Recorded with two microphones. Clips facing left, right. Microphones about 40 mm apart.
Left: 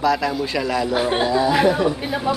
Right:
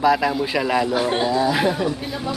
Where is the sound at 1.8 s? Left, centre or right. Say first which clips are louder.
Left 3 dB; centre.